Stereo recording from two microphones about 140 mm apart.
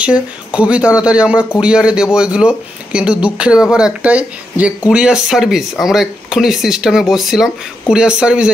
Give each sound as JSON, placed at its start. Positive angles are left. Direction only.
{"t": 0.0, "sound": "a man's voice", "side_deg": -10}